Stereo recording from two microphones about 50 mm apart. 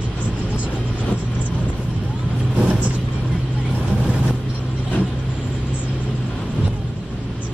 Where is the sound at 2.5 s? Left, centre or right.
Right.